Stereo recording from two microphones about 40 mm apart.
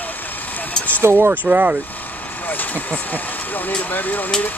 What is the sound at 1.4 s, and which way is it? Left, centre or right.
Speech, right.